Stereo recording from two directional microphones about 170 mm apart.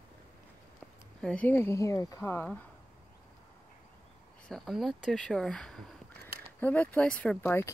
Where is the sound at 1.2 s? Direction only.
5° left (ahead or behind).